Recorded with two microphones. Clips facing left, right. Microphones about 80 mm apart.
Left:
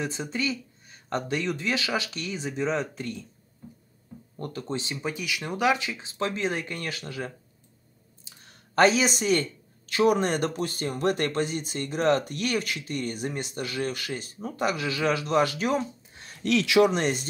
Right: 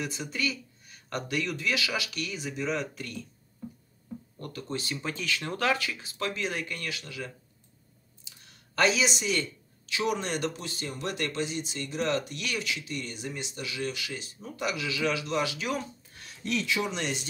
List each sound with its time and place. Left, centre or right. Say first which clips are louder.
0.0 s speech: left 3 dB; left
4.4 s speech: left 4 dB; left
5.0 s speech: left 1 dB; centre; by 7.3 s left
8.5 s speech: left 5 dB; left
16.4 s speech: left 9 dB; left
16.9 s speech: left 6 dB; left